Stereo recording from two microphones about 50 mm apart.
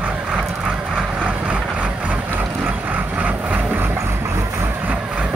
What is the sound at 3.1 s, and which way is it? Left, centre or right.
Vehicle, right.